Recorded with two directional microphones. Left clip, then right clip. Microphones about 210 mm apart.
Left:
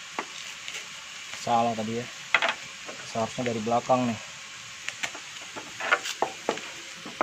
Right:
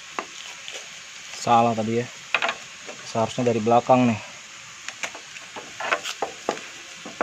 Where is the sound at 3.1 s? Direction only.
50° right (ahead or behind).